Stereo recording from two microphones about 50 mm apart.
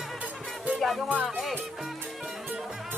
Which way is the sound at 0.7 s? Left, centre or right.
Centre.